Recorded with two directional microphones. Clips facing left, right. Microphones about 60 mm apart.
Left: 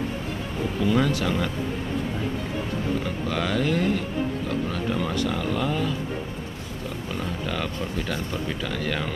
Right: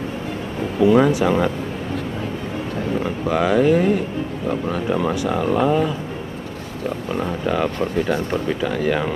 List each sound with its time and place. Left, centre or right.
0.7 s speech: right
3.0 s speech: centre
7.2 s speech: right